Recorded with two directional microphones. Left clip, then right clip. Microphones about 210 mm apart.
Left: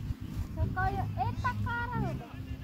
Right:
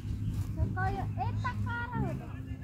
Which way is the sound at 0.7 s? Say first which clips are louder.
Left 3 dB; 30° left (ahead or behind).